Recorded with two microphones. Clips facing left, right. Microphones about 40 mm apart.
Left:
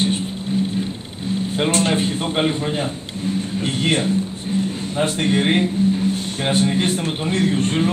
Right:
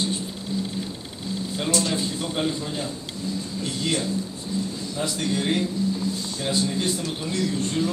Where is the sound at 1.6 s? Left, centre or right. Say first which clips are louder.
Left 6 dB; left.